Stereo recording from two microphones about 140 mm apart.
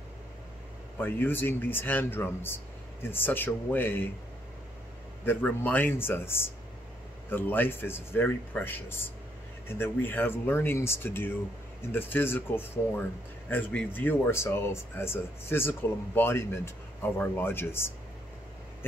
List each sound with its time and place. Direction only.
0.9 s speech: 15° left (ahead or behind)
5.2 s speech: 15° left (ahead or behind)